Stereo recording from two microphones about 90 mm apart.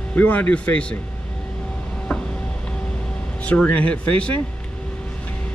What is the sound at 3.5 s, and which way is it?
Speech, 15° left (ahead or behind).